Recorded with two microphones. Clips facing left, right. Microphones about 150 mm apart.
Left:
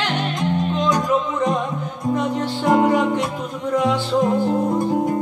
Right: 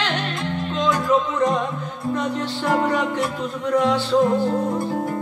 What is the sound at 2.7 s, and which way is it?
Music, 15° left (ahead or behind).